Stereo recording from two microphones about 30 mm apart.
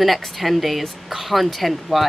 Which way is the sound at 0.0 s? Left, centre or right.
Centre.